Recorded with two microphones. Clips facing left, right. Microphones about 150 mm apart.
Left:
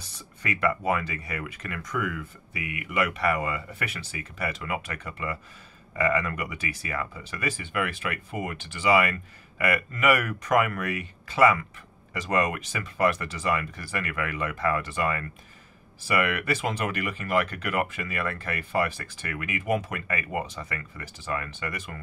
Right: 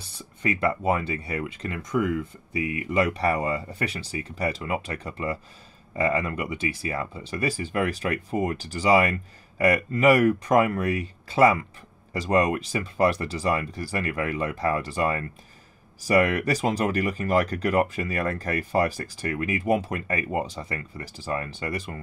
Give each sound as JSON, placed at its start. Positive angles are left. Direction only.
{"t": 0.4, "sound": "speech", "side_deg": -30}